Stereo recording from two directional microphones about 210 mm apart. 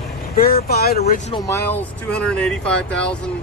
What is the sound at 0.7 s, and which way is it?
Speech, 50° left (ahead or behind).